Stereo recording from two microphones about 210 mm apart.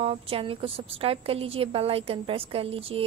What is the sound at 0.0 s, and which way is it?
A woman's voice, 25° right (ahead or behind).